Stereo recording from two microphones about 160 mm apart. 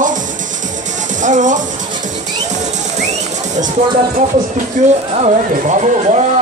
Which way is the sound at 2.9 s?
45° right (ahead or behind).